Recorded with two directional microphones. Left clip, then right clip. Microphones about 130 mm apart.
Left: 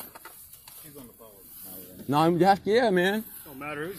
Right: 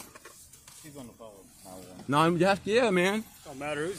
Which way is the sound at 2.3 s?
25° right (ahead or behind).